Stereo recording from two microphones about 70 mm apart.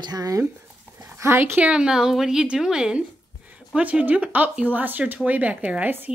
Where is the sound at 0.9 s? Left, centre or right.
Right.